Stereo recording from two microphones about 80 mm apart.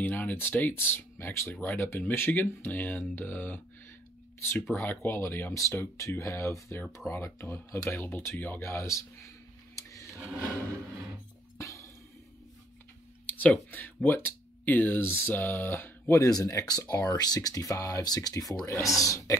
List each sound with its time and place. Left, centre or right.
0.0 s speech: left
1.5 s speech: left
5.5 s speech: left
9.8 s a sound: left
11.5 s music: left
13.3 s speech: left
16.2 s speech: left